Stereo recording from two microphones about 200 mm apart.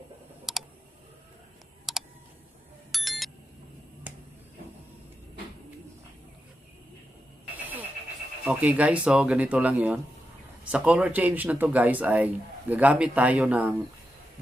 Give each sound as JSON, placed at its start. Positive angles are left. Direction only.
{"t": 0.5, "sound": "a sound", "side_deg": 0}
{"t": 1.9, "sound": "computer keyboard", "side_deg": 0}
{"t": 2.9, "sound": "bicycle bell", "side_deg": 0}
{"t": 4.1, "sound": "finger snapping", "side_deg": -10}
{"t": 8.5, "sound": "speech", "side_deg": -5}